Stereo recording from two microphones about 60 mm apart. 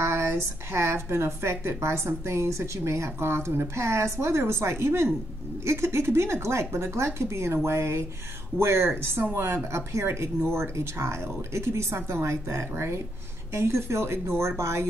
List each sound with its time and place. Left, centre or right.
0.0 s speech: right